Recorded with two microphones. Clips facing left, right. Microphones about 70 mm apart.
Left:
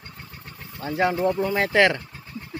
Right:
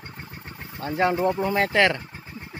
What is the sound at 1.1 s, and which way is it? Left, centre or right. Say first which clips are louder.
Speech: even; centre.